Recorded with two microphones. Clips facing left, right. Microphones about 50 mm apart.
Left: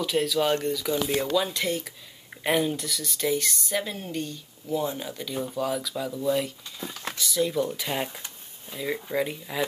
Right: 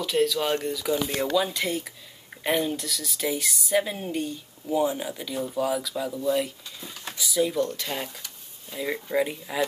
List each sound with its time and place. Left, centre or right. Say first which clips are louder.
0.0 s speech: even; centre
6.8 s a sound: left 5 dB; left
7.2 s speech: right 1 dB; centre
7.6 s speech: left 1 dB; centre
8.7 s speech: right 2 dB; centre